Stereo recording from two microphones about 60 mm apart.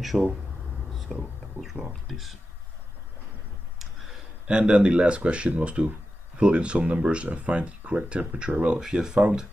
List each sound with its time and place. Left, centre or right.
0.0 s speech: centre
0.9 s whispering: centre
2.0 s speech: centre
4.5 s speech: centre